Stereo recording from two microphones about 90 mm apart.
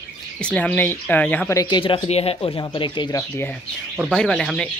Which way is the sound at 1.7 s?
65° left (ahead or behind).